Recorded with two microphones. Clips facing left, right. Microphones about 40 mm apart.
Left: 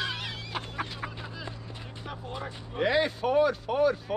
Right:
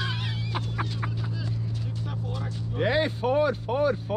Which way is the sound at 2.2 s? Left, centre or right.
Left.